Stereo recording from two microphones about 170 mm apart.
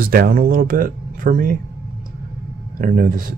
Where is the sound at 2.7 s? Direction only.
55° right (ahead or behind).